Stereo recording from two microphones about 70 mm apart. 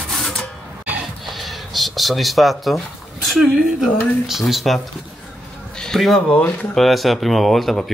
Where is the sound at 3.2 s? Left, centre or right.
Centre.